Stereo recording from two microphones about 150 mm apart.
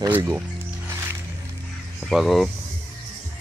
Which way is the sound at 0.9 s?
15° right (ahead or behind).